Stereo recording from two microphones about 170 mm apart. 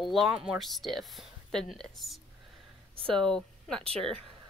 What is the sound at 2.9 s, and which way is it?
Speech, 30° right (ahead or behind).